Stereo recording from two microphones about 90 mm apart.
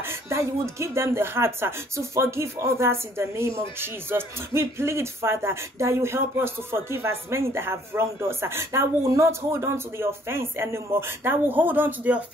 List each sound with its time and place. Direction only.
0.0 s speech: 30° right (ahead or behind)